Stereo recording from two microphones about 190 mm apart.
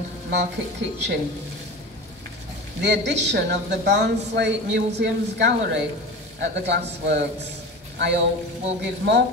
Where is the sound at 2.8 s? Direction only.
65° right (ahead or behind).